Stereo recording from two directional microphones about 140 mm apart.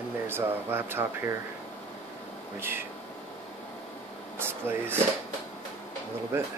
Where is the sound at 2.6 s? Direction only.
15° right (ahead or behind).